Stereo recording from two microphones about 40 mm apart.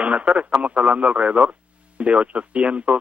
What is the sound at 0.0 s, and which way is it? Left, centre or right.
Speech, right.